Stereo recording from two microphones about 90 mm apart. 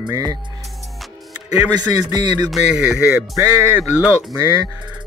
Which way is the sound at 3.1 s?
30° right (ahead or behind).